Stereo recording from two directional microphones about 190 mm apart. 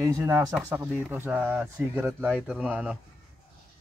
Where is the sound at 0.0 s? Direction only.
15° right (ahead or behind).